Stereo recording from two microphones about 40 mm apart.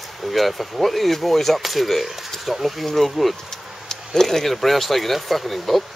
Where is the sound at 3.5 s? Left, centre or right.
Centre.